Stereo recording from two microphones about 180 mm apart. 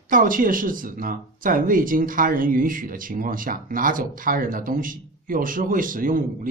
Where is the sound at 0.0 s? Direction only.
50° right (ahead or behind).